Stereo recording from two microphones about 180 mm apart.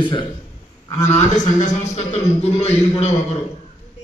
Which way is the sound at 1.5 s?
40° left (ahead or behind).